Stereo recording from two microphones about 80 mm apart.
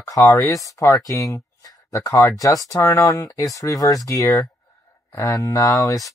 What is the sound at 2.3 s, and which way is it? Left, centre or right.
Speech, left.